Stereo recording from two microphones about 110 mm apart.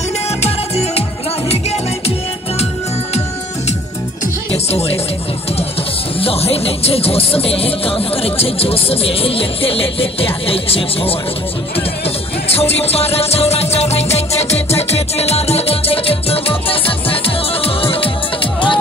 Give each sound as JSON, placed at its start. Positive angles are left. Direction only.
{"t": 0.4, "sound": "music", "side_deg": 75}
{"t": 4.6, "sound": "music", "side_deg": 70}
{"t": 6.1, "sound": "speech", "side_deg": 60}
{"t": 12.4, "sound": "music", "side_deg": 65}